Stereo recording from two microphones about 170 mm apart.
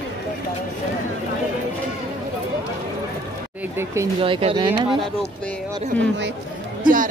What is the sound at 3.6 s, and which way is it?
Speech, 15° right (ahead or behind).